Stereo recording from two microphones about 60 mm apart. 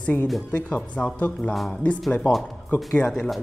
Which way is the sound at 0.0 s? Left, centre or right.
Left.